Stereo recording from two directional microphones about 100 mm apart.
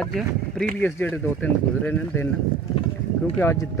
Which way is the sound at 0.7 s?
15° left (ahead or behind).